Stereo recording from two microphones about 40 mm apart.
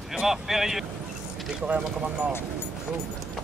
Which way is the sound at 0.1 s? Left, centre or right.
Centre.